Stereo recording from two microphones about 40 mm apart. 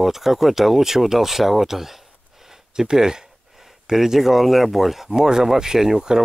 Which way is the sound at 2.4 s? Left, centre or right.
Centre.